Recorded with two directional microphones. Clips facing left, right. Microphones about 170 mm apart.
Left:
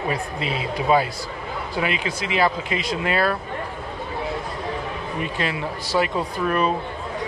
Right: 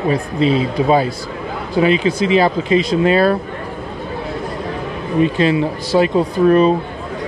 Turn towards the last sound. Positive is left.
turn(degrees=-25)  # may be behind; listen again after turning